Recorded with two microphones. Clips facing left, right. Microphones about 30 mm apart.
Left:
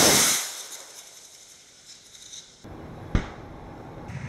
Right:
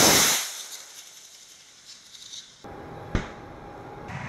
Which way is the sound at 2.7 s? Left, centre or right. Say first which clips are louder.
Right 2 dB; centre.